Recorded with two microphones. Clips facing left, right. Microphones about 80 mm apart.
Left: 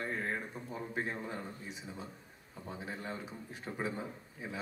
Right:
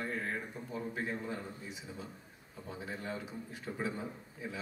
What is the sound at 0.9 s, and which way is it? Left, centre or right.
Speech, left.